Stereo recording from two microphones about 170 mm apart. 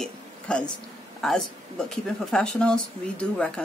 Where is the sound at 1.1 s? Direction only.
Centre (ahead or behind).